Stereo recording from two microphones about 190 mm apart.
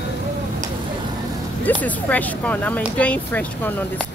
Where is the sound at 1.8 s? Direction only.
10° left (ahead or behind).